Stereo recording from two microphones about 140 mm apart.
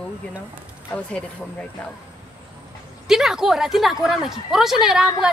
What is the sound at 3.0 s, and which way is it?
A woman's voice, 5° right (ahead or behind).